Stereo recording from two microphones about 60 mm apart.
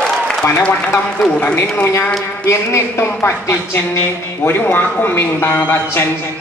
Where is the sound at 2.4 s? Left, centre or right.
Left.